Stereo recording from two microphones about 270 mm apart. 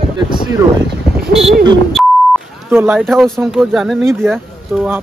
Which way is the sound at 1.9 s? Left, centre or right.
Centre.